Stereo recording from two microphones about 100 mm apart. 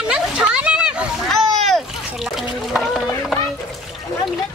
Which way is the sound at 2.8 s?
5° left (ahead or behind).